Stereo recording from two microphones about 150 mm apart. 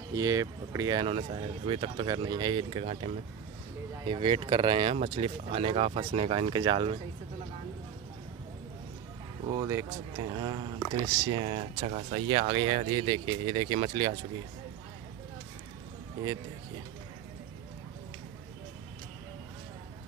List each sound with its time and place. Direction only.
0.1 s speech: 25° right (ahead or behind)
9.5 s speech: 20° right (ahead or behind)